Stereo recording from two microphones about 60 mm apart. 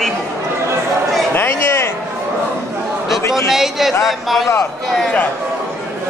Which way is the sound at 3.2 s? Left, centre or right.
Left.